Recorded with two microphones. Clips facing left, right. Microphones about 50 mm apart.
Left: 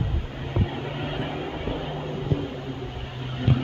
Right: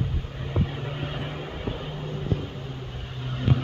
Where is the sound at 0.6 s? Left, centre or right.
Left.